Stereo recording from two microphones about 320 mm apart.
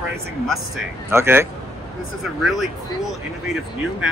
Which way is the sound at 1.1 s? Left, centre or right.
Centre.